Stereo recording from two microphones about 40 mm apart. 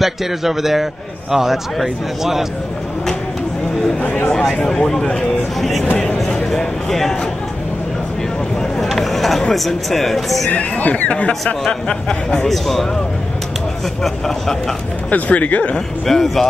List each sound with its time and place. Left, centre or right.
0.0 s a man's voice: centre
4.3 s speech: centre
5.6 s speech: centre
6.5 s a sound: centre
8.8 s a sound: centre
9.5 s speech: centre
10.5 s speech: left
11.9 s a man's voice: centre
12.4 s speech: centre
14.0 s speech: centre
15.0 s speech: left
15.7 s speech: centre